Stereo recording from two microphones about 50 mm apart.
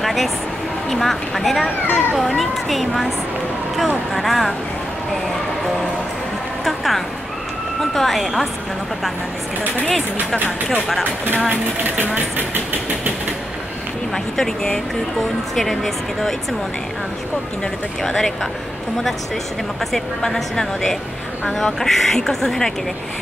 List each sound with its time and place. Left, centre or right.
0.0 s a sound: centre
0.8 s speech: centre
1.9 s speech: left
2.1 s speech: centre
4.1 s speech: centre
6.6 s speech: centre
12.4 s speech: right
14.1 s speech: centre
18.0 s speech: centre
19.9 s speech: centre